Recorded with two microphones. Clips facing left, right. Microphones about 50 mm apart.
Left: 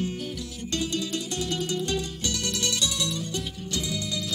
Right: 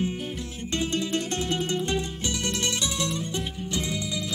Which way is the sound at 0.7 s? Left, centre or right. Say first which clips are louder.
Right 2 dB; right.